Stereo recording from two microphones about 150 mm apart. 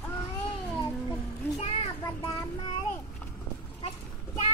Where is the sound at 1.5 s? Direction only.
40° left (ahead or behind).